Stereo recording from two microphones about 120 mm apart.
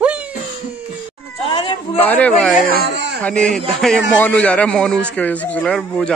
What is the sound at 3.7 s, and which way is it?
A man's voice, 5° left (ahead or behind).